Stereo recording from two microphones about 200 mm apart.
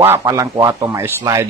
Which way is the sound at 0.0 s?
15° right (ahead or behind).